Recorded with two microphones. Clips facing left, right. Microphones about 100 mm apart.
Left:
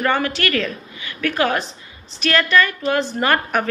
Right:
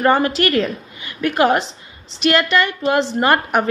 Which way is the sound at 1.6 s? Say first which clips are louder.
Right 2 dB; 90° right.